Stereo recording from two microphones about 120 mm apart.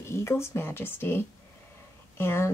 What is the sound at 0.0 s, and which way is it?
Speech, 20° left (ahead or behind).